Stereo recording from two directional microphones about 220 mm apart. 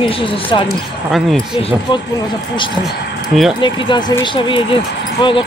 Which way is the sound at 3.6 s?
20° left (ahead or behind).